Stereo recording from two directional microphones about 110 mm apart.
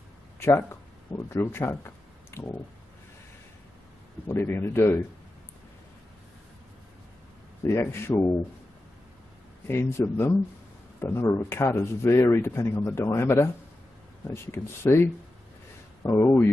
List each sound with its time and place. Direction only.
0.4 s speech: 20° left (ahead or behind)
2.3 s a sound: 25° left (ahead or behind)
4.3 s speech: 20° left (ahead or behind)
7.6 s speech: 25° left (ahead or behind)
9.7 s speech: 25° left (ahead or behind)